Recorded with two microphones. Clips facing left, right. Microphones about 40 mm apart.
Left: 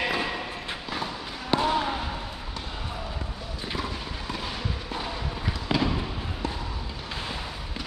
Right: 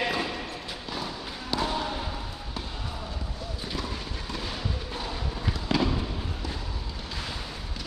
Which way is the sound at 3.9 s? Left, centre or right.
Centre.